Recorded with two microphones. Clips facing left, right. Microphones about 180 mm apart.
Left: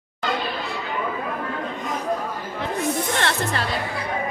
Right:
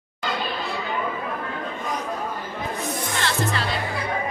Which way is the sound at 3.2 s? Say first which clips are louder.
Left 1 dB; 60° left (ahead or behind).